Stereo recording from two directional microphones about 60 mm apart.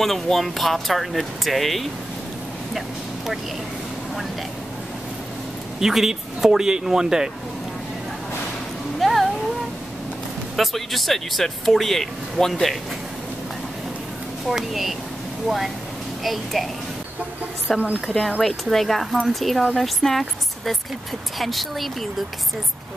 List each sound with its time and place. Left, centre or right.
0.0 s speech: centre
5.8 s speech: centre
9.0 s music: centre
10.5 s speech: centre
14.5 s speech: centre
17.7 s speech: right
18.0 s speech: centre